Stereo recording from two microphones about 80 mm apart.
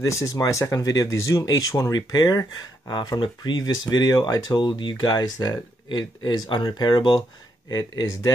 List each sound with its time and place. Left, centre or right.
0.0 s speech: left
2.9 s speech: left
7.7 s speech: left